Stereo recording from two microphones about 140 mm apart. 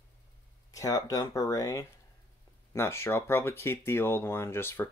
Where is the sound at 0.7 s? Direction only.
25° left (ahead or behind).